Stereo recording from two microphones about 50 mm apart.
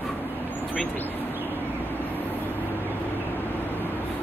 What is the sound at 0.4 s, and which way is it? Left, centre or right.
Vehicle, left.